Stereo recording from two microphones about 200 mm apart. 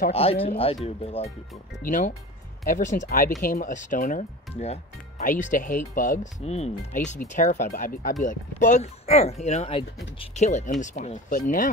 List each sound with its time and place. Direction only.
0.1 s speech: 30° left (ahead or behind)